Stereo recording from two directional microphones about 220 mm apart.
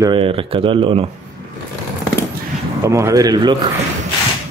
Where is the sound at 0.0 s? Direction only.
25° right (ahead or behind).